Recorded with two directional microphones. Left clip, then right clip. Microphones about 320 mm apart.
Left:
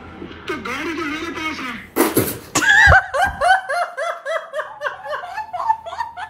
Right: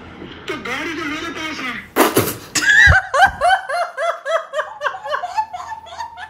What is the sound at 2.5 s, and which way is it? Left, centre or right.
Laughter, centre.